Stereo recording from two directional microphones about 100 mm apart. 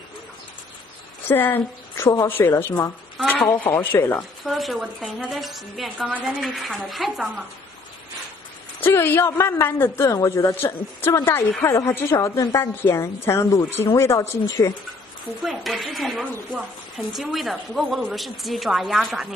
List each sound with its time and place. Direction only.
1.2 s a woman's voice: 20° left (ahead or behind)
4.5 s a woman's voice: centre (ahead or behind)
8.8 s speech: 20° left (ahead or behind)
15.4 s a woman's voice: centre (ahead or behind)